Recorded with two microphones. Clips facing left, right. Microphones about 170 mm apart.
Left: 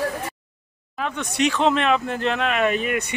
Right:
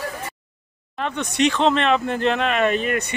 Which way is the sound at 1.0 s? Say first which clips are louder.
Right 2 dB; 5° left (ahead or behind).